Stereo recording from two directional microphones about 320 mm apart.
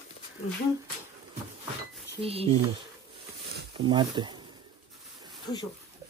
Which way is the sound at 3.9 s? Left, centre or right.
Centre.